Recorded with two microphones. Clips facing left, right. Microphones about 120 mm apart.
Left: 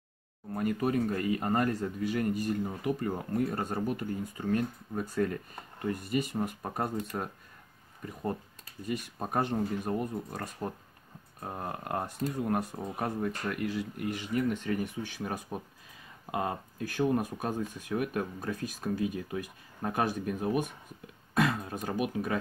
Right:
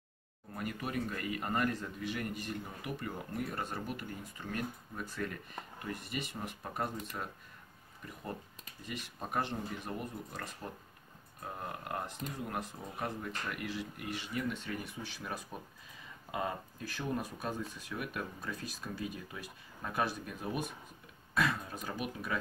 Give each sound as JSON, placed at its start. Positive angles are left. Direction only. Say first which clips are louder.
{"t": 0.6, "sound": "speech", "louder": "left 9 dB", "side_deg": 40}
{"t": 8.8, "sound": "speech", "louder": "left 8 dB", "side_deg": 45}